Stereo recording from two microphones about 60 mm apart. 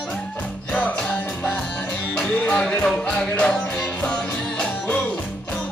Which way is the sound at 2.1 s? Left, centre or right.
Centre.